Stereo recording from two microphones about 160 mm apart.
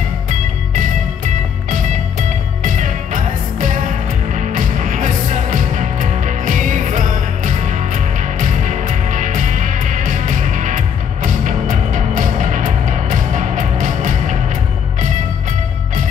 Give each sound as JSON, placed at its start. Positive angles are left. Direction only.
{"t": 0.3, "sound": "music", "side_deg": -55}